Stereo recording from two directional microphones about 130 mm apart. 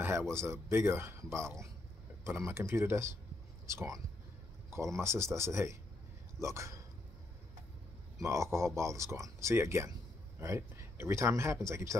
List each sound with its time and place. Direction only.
0.3 s speech: 20° right (ahead or behind)
8.2 s speech: 25° right (ahead or behind)